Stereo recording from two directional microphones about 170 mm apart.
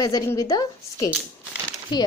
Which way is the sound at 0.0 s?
20° left (ahead or behind).